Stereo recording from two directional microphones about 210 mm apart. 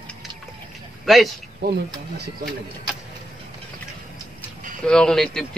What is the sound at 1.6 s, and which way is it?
Speech, 50° right (ahead or behind).